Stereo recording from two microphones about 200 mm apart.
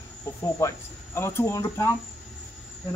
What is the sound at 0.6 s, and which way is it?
Speech, 15° left (ahead or behind).